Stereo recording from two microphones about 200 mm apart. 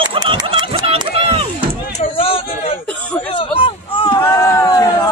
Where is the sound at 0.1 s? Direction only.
25° right (ahead or behind).